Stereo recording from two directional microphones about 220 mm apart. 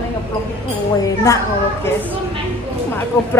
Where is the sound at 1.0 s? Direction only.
15° left (ahead or behind).